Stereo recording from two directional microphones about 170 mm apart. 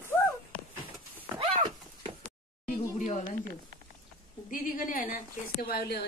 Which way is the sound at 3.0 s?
45° left (ahead or behind).